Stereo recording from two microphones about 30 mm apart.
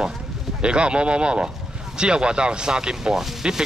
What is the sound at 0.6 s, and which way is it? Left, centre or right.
Speech, right.